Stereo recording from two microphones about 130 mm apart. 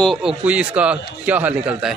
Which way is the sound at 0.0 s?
Centre (ahead or behind).